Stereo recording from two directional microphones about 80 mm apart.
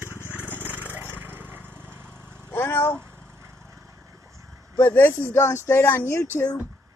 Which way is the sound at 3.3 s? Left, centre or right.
Right.